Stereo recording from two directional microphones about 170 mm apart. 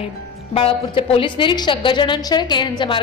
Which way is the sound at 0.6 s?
30° left (ahead or behind).